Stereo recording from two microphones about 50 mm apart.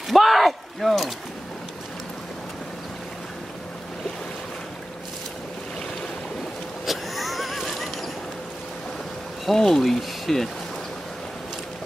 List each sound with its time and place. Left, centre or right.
0.1 s speech: centre
6.9 s a sound: centre
9.5 s speech: centre